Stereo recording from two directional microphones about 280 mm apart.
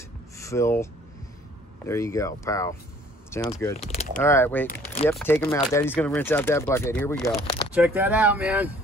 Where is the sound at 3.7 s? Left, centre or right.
Left.